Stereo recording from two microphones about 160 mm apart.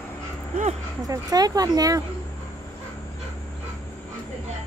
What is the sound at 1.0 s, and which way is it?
Speech, 25° right (ahead or behind).